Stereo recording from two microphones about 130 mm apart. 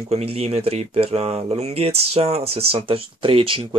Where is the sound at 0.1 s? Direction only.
50° right (ahead or behind).